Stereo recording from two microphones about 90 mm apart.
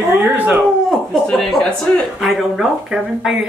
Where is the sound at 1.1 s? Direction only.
5° left (ahead or behind).